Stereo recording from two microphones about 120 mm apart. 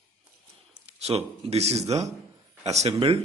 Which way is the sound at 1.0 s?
60° right (ahead or behind).